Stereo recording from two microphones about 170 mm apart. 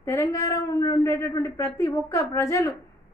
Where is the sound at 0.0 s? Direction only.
15° left (ahead or behind).